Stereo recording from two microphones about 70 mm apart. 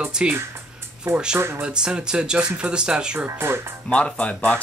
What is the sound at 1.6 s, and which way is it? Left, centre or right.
Speech, centre.